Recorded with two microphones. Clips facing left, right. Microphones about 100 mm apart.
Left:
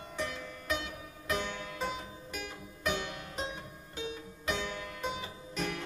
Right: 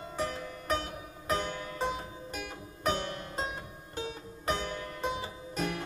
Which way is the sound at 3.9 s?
40° right (ahead or behind).